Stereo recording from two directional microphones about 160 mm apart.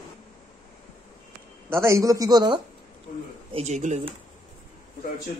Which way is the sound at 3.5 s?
45° right (ahead or behind).